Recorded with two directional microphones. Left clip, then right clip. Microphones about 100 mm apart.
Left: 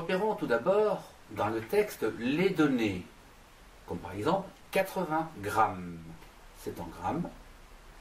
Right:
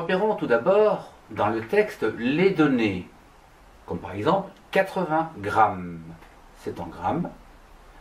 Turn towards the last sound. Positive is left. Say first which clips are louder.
# right 7 dB
turn(degrees=10)  # may be behind; listen again after turning